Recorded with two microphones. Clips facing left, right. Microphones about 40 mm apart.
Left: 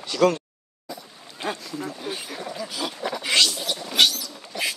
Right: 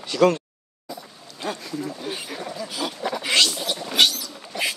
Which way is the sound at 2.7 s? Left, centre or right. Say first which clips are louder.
Right 3 dB; centre.